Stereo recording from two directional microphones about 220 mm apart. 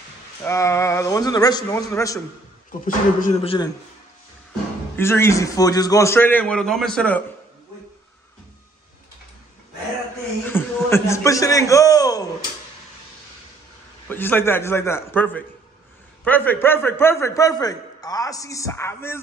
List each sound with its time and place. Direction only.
0.4 s a man's voice: 10° left (ahead or behind)
2.8 s speech: 35° left (ahead or behind)
4.9 s a man's voice: 10° left (ahead or behind)
10.4 s a man's voice: 10° left (ahead or behind)
14.0 s a man's voice: 10° left (ahead or behind)